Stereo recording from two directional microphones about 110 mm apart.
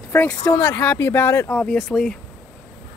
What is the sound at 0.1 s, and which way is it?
Speech, 15° left (ahead or behind).